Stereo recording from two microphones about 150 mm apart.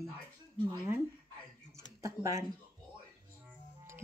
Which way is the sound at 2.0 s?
20° right (ahead or behind).